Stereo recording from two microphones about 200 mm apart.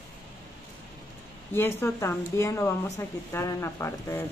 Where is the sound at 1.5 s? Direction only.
10° left (ahead or behind).